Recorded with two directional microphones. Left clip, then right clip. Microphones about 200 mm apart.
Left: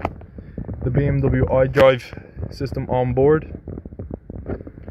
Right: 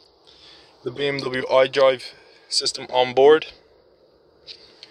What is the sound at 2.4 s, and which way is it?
Speech, 10° right (ahead or behind).